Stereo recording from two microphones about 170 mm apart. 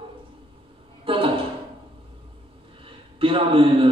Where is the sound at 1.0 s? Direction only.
30° right (ahead or behind).